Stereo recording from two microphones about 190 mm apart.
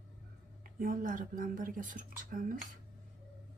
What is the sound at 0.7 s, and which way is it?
Speech, 45° right (ahead or behind).